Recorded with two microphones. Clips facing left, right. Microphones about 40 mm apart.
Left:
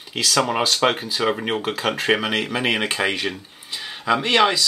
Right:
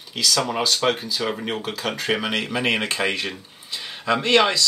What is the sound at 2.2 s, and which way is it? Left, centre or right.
Speech, centre.